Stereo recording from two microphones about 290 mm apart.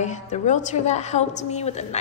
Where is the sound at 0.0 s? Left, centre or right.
Left.